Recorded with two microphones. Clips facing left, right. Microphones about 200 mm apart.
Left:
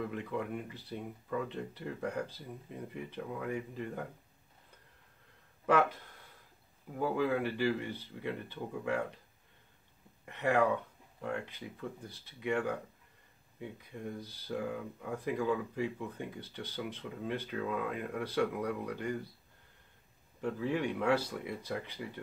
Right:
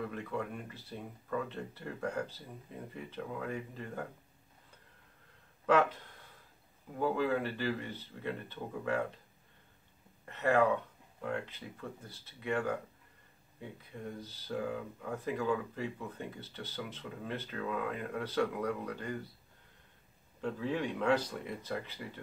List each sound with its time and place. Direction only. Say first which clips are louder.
0.1 s speech: left 1 dB; 15° left (ahead or behind)
5.7 s speech: right 1 dB; 10° left (ahead or behind)
7.0 s speech: even; 15° left (ahead or behind)
10.2 s speech: right 1 dB; 15° left (ahead or behind)
20.3 s speech: left 1 dB; 10° left (ahead or behind)